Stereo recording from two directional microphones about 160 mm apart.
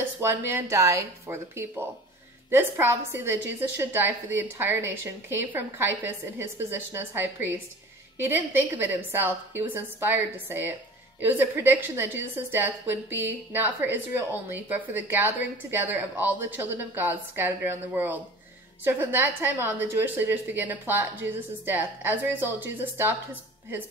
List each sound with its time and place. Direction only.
0.2 s a woman's voice: 15° right (ahead or behind)